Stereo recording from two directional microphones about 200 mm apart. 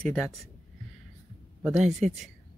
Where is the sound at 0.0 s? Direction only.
5° left (ahead or behind).